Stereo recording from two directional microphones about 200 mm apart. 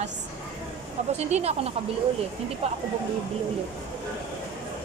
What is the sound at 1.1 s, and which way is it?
Speech, 30° right (ahead or behind).